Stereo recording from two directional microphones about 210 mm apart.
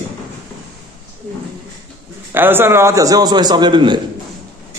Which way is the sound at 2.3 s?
10° right (ahead or behind).